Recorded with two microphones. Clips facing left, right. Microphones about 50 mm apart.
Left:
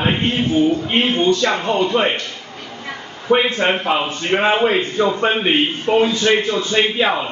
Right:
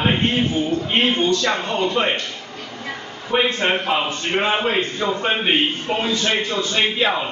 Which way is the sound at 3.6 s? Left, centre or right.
Centre.